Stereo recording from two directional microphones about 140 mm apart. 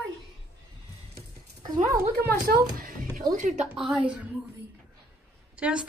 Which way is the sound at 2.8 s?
90° right.